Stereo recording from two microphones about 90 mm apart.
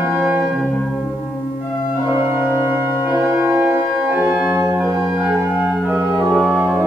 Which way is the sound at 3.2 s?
25° right (ahead or behind).